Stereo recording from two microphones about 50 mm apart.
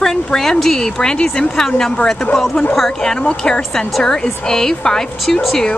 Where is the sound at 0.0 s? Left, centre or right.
Centre.